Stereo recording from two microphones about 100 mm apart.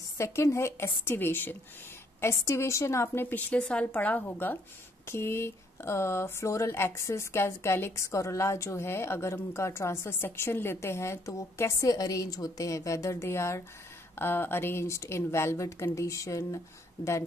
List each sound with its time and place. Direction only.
0.2 s speech: 30° left (ahead or behind)